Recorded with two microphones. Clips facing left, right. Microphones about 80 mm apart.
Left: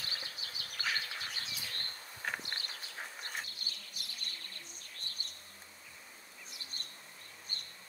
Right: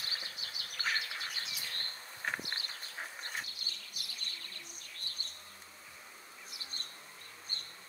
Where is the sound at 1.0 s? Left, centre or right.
Left.